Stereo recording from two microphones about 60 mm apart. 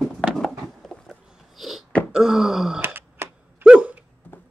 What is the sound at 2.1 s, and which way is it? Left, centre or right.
Wail, centre.